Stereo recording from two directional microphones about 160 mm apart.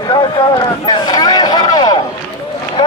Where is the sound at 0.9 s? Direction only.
25° left (ahead or behind).